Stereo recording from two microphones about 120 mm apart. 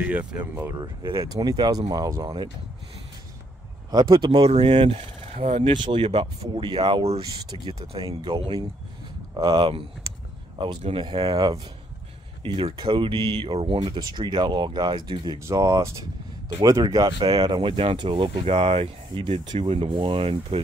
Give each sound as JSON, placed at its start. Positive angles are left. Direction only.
{"t": 0.0, "sound": "speech", "side_deg": -10}
{"t": 1.1, "sound": "speech", "side_deg": -30}
{"t": 3.9, "sound": "speech", "side_deg": -40}
{"t": 4.5, "sound": "speech", "side_deg": -60}
{"t": 4.7, "sound": "speech", "side_deg": -50}
{"t": 5.8, "sound": "speech", "side_deg": -45}
{"t": 9.6, "sound": "speech", "side_deg": -50}
{"t": 11.0, "sound": "speech", "side_deg": -45}
{"t": 11.3, "sound": "speech", "side_deg": -35}
{"t": 12.4, "sound": "speech", "side_deg": -45}
{"t": 13.7, "sound": "speech", "side_deg": -35}
{"t": 15.3, "sound": "speech", "side_deg": -25}
{"t": 18.4, "sound": "speech", "side_deg": -55}